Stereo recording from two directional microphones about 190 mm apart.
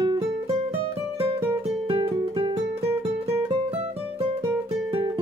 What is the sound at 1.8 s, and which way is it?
Music, 30° right (ahead or behind).